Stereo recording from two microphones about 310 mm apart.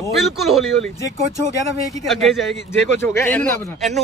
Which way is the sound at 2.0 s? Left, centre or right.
Centre.